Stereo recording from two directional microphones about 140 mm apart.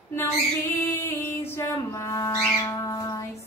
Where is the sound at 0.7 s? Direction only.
15° left (ahead or behind).